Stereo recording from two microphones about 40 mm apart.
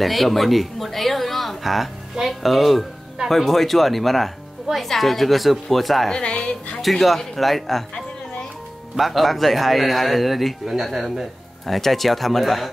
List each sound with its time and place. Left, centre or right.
0.0 s a man's voice: centre
6.2 s a woman's voice: left
6.8 s a man's voice: centre
8.9 s a man's voice: centre